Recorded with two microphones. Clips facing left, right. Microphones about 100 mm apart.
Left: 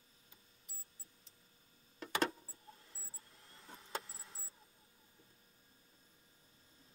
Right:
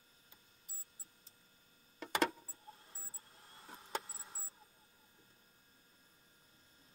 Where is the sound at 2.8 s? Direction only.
35° right (ahead or behind).